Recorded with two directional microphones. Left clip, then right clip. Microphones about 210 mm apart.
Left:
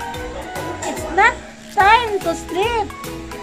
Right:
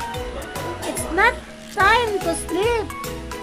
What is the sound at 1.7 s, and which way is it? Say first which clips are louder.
Music: left 4 dB; 15° right (ahead or behind).